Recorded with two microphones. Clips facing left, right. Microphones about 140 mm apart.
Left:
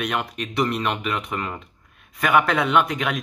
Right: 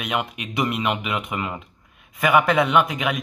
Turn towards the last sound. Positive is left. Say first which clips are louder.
# right 1 dB
turn(degrees=0)  # may be behind; listen again after turning